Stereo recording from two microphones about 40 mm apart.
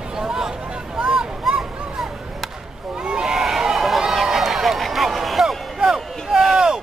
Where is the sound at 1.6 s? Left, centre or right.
Centre.